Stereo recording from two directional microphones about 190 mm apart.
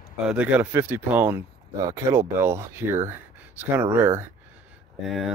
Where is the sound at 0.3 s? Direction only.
10° right (ahead or behind).